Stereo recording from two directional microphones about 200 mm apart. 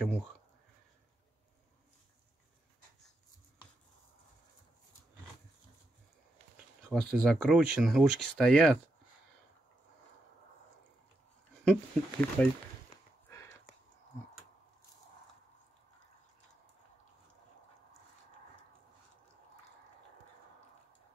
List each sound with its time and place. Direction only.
6.9 s speech: centre (ahead or behind)
11.6 s speech: 5° left (ahead or behind)
13.3 s a sound: 15° left (ahead or behind)